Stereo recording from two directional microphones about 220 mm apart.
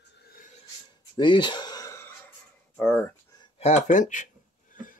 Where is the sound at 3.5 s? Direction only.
30° left (ahead or behind).